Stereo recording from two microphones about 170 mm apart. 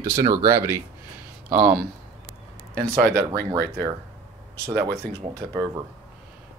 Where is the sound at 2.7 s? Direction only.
65° right (ahead or behind).